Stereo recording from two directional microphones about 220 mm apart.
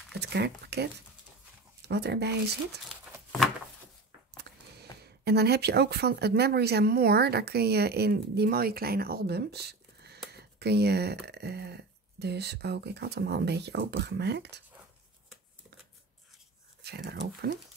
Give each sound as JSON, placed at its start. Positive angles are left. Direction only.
{"t": 0.2, "sound": "speech", "side_deg": -50}
{"t": 2.9, "sound": "a sound", "side_deg": 0}
{"t": 4.4, "sound": "speech", "side_deg": -50}
{"t": 16.8, "sound": "speech", "side_deg": -45}